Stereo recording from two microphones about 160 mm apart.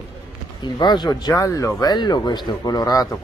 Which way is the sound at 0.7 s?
25° left (ahead or behind).